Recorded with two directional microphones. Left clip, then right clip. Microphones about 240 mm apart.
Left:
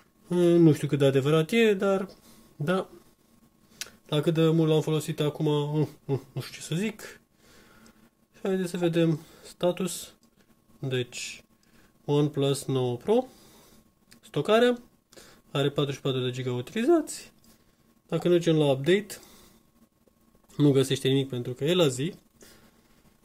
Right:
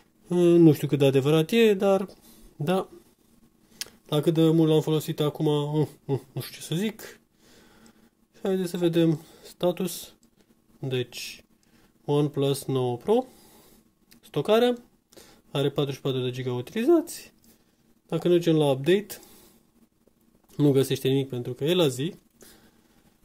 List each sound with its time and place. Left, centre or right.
0.3 s speech: centre
20.5 s speech: centre